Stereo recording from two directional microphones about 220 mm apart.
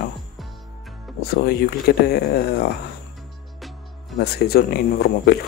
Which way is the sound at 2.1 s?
45° left (ahead or behind).